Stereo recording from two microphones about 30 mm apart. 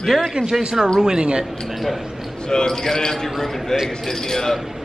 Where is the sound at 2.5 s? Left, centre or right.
Centre.